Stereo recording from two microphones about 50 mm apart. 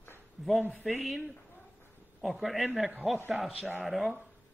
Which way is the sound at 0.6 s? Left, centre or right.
Right.